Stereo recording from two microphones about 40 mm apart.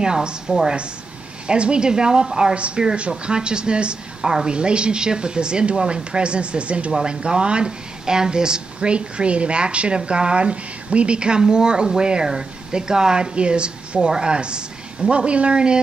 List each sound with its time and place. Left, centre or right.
0.0 s a woman's voice: right
1.5 s a woman's voice: right
2.5 s a woman's voice: right